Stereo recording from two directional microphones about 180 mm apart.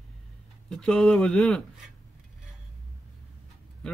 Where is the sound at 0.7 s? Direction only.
5° left (ahead or behind).